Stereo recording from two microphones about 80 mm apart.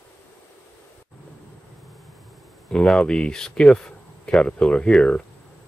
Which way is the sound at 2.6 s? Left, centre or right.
Centre.